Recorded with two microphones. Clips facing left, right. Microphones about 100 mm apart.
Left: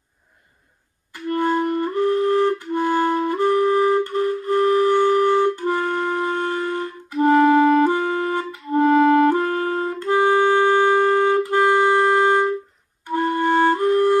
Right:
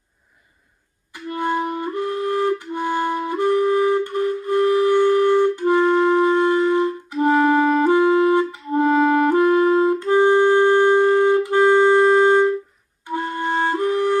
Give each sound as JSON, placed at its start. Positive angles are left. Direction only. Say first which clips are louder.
{"t": 1.1, "sound": "flute", "louder": "left 2 dB", "side_deg": -15}
{"t": 5.6, "sound": "music", "louder": "right 6 dB", "side_deg": -15}
{"t": 6.7, "sound": "clarinet", "louder": "right 7 dB", "side_deg": -15}
{"t": 10.2, "sound": "clarinet", "louder": "right 1 dB", "side_deg": 15}
{"t": 11.0, "sound": "clarinet", "louder": "right 2 dB", "side_deg": -15}
{"t": 13.1, "sound": "music", "louder": "left 4 dB", "side_deg": -15}